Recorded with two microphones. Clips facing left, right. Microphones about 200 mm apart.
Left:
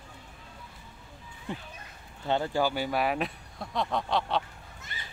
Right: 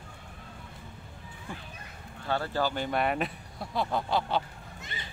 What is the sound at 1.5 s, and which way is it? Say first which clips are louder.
A child's voice: left 5 dB; 20° left (ahead or behind).